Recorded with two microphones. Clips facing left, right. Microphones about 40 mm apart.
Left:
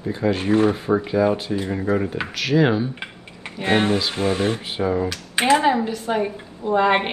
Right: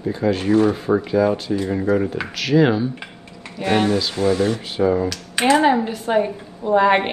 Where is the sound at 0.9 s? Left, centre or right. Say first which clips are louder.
Right 1 dB; centre.